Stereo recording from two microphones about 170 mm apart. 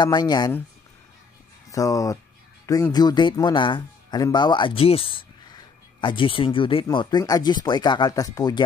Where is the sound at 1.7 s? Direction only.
20° left (ahead or behind).